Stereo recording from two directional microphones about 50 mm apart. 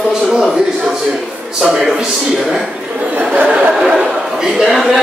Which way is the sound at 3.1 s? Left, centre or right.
Right.